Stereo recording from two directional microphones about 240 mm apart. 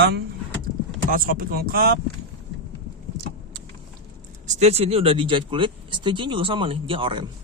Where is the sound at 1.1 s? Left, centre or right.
Right.